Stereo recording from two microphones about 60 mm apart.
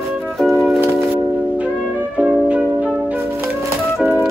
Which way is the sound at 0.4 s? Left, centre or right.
Centre.